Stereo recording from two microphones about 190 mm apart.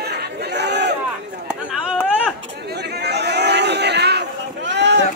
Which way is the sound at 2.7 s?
60° right (ahead or behind).